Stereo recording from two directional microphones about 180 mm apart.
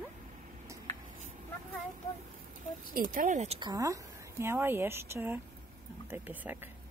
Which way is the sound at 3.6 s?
20° right (ahead or behind).